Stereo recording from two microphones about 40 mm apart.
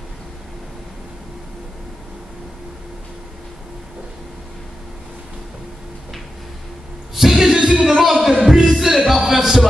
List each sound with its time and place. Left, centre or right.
7.2 s music: centre
8.0 s music: centre